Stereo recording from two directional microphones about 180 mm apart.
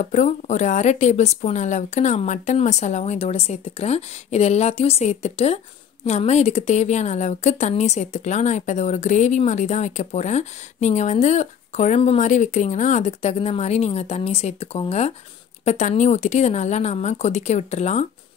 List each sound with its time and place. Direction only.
0.0 s a woman's voice: 40° left (ahead or behind)